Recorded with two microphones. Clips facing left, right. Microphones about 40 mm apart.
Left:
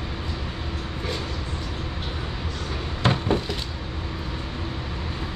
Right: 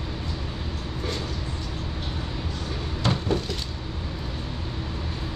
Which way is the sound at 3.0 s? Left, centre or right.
Left.